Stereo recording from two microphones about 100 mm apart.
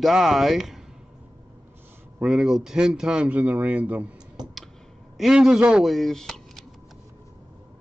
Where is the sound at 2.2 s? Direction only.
5° right (ahead or behind).